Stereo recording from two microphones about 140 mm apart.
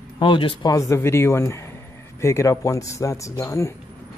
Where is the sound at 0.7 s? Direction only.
20° left (ahead or behind).